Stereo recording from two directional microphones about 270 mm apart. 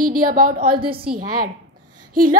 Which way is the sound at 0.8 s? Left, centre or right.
Centre.